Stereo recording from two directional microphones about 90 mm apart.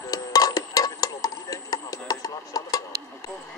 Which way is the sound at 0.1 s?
45° left (ahead or behind).